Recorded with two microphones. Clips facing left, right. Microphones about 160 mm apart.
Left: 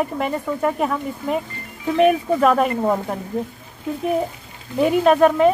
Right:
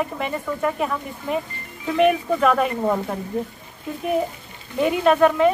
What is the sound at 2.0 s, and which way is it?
Speech, 40° left (ahead or behind).